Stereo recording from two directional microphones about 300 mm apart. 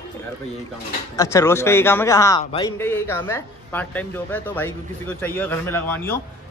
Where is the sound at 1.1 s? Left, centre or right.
Centre.